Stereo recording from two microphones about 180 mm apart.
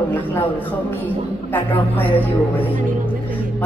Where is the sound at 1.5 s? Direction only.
10° left (ahead or behind).